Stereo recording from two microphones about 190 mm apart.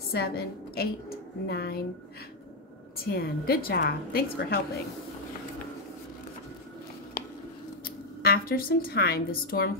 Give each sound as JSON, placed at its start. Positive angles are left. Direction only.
{"t": 0.1, "sound": "a woman's voice", "side_deg": 55}
{"t": 3.0, "sound": "a woman's voice", "side_deg": 55}
{"t": 7.8, "sound": "a woman's voice", "side_deg": 50}